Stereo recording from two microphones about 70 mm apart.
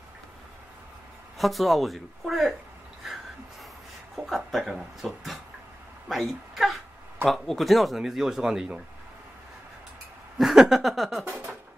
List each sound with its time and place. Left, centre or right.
1.4 s speech: centre
4.3 s speech: centre
10.3 s speech: centre
11.2 s speech: right